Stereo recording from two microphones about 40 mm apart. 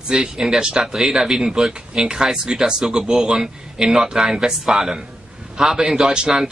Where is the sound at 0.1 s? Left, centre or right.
Centre.